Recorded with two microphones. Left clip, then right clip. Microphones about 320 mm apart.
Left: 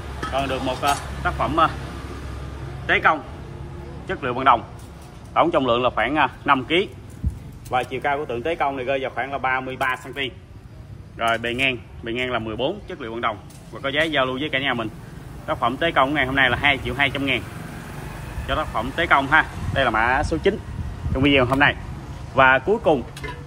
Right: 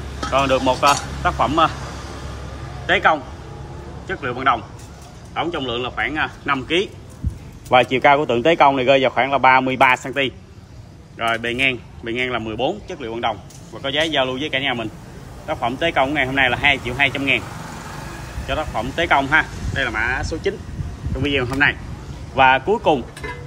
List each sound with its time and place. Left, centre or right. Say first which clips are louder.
0.3 s speech: right 7 dB; centre
0.8 s speech: right 6 dB; centre
2.9 s a man's voice: right 2 dB; centre
7.7 s speech: right 9 dB; right
11.1 s speech: right 1 dB; centre
18.5 s a man's voice: right 1 dB; centre